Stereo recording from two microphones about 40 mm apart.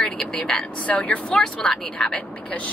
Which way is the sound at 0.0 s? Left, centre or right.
Centre.